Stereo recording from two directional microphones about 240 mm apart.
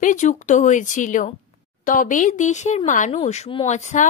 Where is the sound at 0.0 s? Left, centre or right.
Left.